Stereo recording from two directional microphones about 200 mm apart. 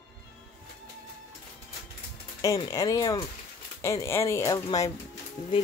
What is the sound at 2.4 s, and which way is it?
Speech, 15° left (ahead or behind).